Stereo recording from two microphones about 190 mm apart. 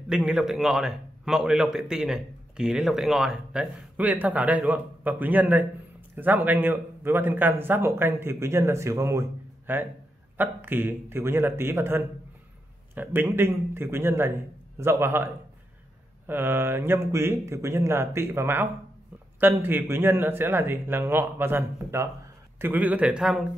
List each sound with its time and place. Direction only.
0.1 s a man's voice: 5° right (ahead or behind)
16.3 s speech: 10° right (ahead or behind)